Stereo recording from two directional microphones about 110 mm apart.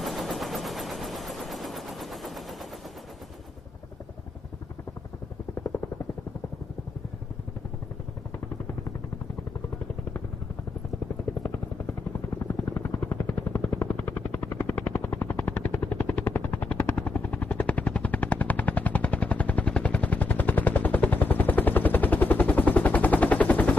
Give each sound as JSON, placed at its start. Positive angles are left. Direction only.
{"t": 0.0, "sound": "machine gun", "side_deg": 0}
{"t": 5.5, "sound": "vehicle", "side_deg": 25}
{"t": 12.4, "sound": "helicopter", "side_deg": 20}